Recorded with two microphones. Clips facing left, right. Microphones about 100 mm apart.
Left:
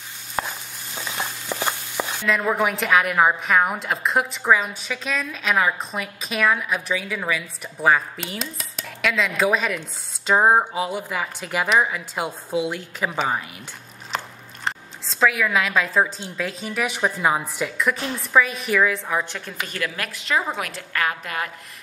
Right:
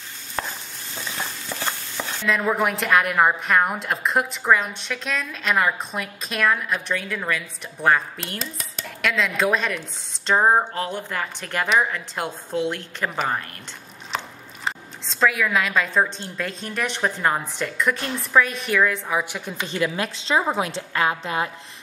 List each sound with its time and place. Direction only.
0.4 s chopping: 15° left (ahead or behind)
0.9 s stir: 15° left (ahead or behind)
2.2 s a woman's voice: centre (ahead or behind)
19.7 s a woman's voice: 25° right (ahead or behind)